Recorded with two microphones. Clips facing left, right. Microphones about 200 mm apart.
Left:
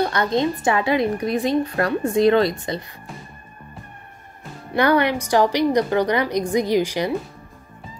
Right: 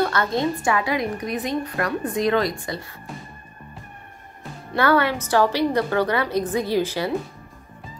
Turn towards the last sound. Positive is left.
turn(degrees=15)  # may be behind; listen again after turning